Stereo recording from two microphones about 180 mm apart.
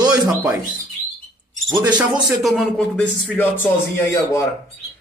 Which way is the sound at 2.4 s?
Centre (ahead or behind).